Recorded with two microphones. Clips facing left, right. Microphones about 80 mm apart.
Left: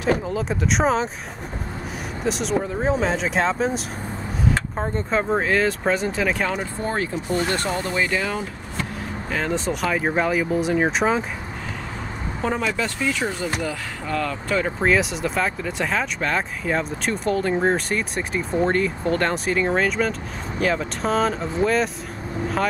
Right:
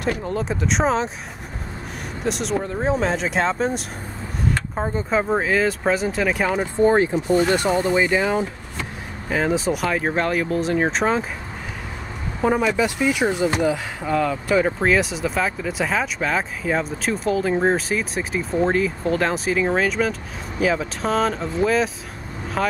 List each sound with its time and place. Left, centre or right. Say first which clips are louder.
0.2 s speech: even; centre
2.2 s speech: even; centre
6.5 s speech: right 8 dB; right
9.3 s speech: right 4 dB; centre
12.4 s speech: right 5 dB; centre